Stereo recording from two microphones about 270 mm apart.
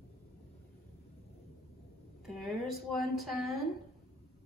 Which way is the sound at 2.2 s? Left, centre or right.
Centre.